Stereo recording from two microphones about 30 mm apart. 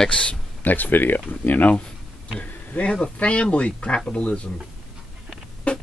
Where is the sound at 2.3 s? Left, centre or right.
Left.